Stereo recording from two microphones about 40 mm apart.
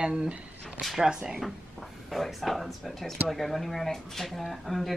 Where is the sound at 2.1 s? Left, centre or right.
Centre.